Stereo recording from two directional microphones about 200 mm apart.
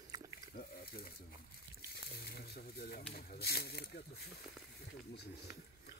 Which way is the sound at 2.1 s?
50° left (ahead or behind).